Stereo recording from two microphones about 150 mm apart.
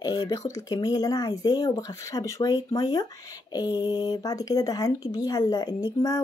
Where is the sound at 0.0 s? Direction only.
25° left (ahead or behind).